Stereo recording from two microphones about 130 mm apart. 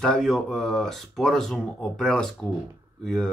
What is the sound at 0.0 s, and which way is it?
Speech, 5° left (ahead or behind).